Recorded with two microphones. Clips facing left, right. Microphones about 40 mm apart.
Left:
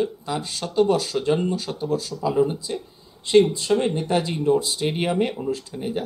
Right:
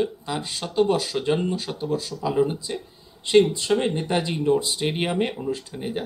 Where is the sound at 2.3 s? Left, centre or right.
Centre.